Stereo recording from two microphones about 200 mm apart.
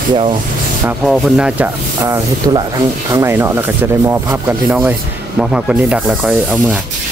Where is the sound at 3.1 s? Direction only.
15° right (ahead or behind).